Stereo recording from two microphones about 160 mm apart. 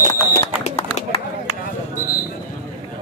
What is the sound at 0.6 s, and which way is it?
Run, 45° left (ahead or behind).